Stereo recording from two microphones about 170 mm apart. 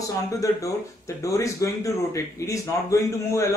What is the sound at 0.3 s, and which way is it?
Speech, 20° left (ahead or behind).